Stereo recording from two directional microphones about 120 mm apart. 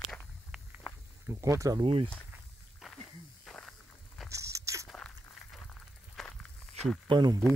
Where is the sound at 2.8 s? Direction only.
5° right (ahead or behind).